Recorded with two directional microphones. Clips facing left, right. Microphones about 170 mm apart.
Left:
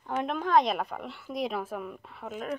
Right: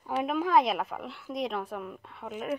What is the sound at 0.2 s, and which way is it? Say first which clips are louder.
A woman's voice: even; 5° right (ahead or behind).